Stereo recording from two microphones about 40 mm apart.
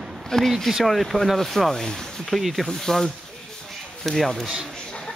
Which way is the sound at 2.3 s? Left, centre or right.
Centre.